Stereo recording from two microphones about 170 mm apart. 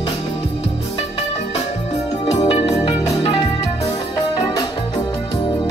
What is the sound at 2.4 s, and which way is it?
Music, 35° left (ahead or behind).